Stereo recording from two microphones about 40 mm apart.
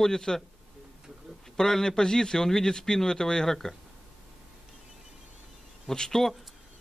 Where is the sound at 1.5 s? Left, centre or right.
Centre.